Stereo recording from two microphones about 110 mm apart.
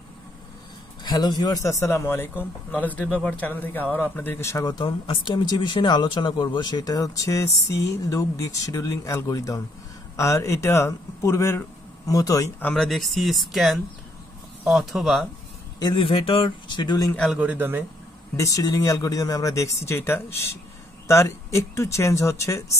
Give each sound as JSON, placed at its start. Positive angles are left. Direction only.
{"t": 1.0, "sound": "speech", "side_deg": 40}
{"t": 4.6, "sound": "speech", "side_deg": 45}
{"t": 12.7, "sound": "speech", "side_deg": 5}
{"t": 15.8, "sound": "speech", "side_deg": 45}
{"t": 17.4, "sound": "a man's voice", "side_deg": -15}
{"t": 18.3, "sound": "speech", "side_deg": 30}